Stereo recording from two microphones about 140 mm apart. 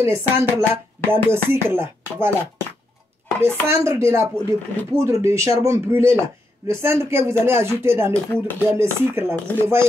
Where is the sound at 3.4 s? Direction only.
20° right (ahead or behind).